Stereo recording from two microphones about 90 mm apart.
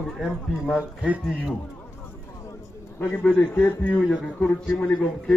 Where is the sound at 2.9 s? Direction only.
20° left (ahead or behind).